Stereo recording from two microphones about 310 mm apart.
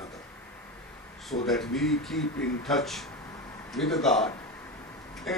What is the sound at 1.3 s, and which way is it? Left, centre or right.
Speech, centre.